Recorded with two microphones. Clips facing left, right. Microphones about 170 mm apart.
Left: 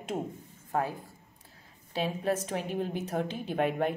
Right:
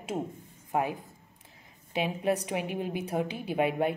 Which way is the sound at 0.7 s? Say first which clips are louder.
Right 2 dB; 15° right (ahead or behind).